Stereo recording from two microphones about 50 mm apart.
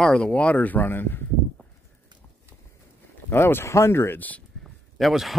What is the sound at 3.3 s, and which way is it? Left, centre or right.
Speech, left.